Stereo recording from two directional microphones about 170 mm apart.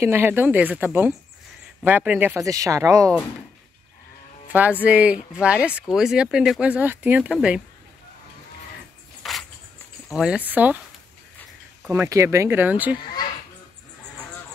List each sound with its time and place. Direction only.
0.0 s speech: 15° right (ahead or behind)
4.5 s speech: 10° right (ahead or behind)
9.2 s a sound: centre (ahead or behind)
10.0 s speech: 5° right (ahead or behind)
11.9 s speech: 15° right (ahead or behind)